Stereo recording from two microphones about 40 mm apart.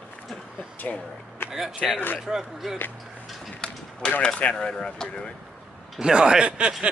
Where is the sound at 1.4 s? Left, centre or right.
Left.